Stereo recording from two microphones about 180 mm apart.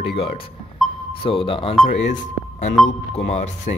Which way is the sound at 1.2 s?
30° left (ahead or behind).